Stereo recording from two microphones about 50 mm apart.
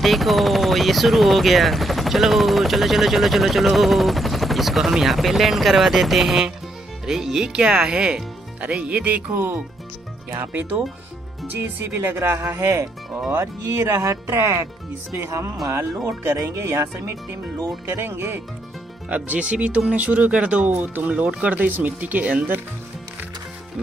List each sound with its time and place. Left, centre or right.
0.0 s speech: centre
8.5 s speech: right
10.4 s speech: right
12.2 s speech: right
14.4 s speech: right
19.0 s speech: right